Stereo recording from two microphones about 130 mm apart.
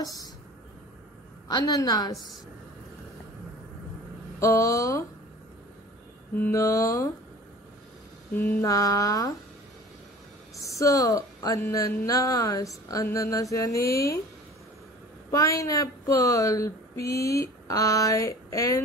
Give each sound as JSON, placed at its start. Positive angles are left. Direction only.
{"t": 0.0, "sound": "speech", "side_deg": 30}
{"t": 1.5, "sound": "speech", "side_deg": 30}
{"t": 4.4, "sound": "speech", "side_deg": 25}
{"t": 6.5, "sound": "speech", "side_deg": 25}
{"t": 8.5, "sound": "speech", "side_deg": 25}
{"t": 10.5, "sound": "speech", "side_deg": 25}
{"t": 15.3, "sound": "speech", "side_deg": 25}